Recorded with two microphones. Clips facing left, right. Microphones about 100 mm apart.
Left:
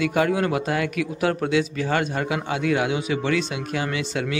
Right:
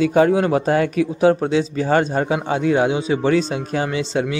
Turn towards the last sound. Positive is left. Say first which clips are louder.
# right 5 dB
turn(degrees=-30)  # may be behind; listen again after turning